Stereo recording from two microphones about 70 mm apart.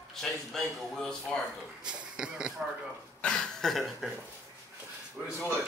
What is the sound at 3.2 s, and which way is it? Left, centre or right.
Speech, centre.